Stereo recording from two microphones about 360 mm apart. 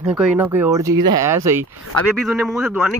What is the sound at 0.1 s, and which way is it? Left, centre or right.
Speech, centre.